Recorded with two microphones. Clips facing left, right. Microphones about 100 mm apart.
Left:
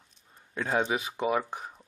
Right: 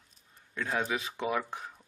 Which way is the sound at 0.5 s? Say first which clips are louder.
Left 4 dB; 30° left (ahead or behind).